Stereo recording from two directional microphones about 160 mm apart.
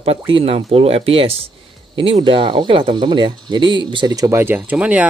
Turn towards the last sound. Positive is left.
turn(degrees=-10)  # may be behind; listen again after turning